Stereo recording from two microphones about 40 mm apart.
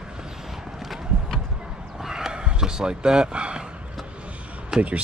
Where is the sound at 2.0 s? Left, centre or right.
Centre.